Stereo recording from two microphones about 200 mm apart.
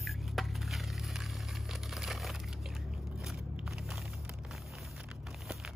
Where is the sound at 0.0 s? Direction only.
Centre (ahead or behind).